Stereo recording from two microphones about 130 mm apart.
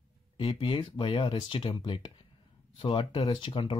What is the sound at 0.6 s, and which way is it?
Speech, 40° left (ahead or behind).